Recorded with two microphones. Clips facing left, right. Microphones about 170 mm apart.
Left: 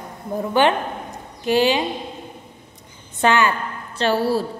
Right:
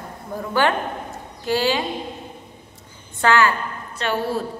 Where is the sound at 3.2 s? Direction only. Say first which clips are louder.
Even; 20° left (ahead or behind).